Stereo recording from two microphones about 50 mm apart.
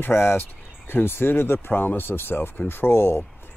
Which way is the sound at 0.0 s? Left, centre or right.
Left.